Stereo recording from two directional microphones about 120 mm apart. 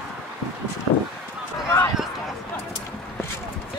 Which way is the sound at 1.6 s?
25° left (ahead or behind).